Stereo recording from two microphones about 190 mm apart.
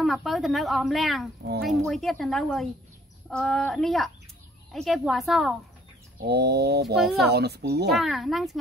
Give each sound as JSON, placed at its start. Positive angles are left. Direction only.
{"t": 0.0, "sound": "speech", "side_deg": 0}
{"t": 6.1, "sound": "speech", "side_deg": -55}
{"t": 7.9, "sound": "speech", "side_deg": 0}